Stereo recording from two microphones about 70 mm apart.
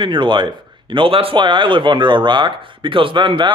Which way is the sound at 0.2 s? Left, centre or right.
Right.